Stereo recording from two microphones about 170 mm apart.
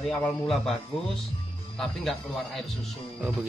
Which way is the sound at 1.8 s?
Centre (ahead or behind).